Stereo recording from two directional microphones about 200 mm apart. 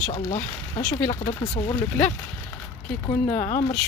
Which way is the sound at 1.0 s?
30° left (ahead or behind).